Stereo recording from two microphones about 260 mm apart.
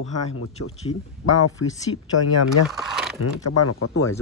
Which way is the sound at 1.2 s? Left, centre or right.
Left.